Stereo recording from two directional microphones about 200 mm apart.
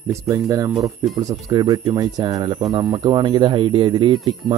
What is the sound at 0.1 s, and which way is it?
Speech, 15° right (ahead or behind).